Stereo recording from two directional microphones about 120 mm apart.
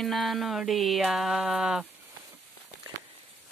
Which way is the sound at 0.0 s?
Centre (ahead or behind).